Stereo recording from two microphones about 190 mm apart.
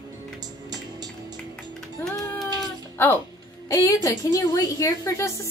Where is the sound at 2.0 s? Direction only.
5° left (ahead or behind).